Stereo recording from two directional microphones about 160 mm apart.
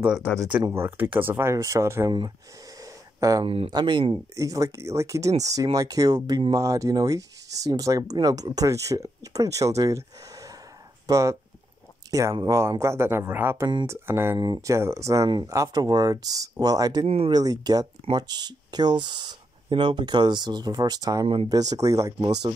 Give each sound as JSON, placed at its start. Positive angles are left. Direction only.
{"t": 0.2, "sound": "speech", "side_deg": 10}
{"t": 0.7, "sound": "speech", "side_deg": -15}
{"t": 2.8, "sound": "a sound", "side_deg": -20}
{"t": 3.4, "sound": "speech", "side_deg": -35}
{"t": 17.0, "sound": "speech", "side_deg": -40}
{"t": 17.3, "sound": "speech", "side_deg": -25}